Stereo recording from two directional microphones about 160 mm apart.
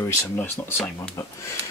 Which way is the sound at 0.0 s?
15° left (ahead or behind).